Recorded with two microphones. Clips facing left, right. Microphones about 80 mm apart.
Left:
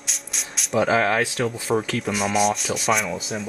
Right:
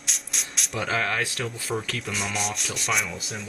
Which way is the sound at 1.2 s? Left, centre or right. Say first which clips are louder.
Left 6 dB; centre.